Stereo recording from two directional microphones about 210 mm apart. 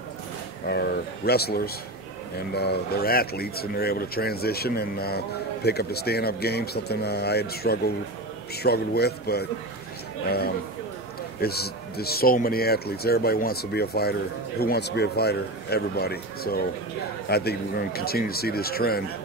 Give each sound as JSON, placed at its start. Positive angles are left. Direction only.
{"t": 0.7, "sound": "speech", "side_deg": 50}